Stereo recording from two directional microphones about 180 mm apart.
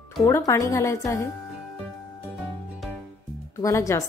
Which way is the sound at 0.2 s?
15° left (ahead or behind).